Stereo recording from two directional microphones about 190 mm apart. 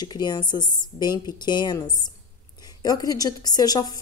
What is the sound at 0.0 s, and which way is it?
Speech, 20° left (ahead or behind).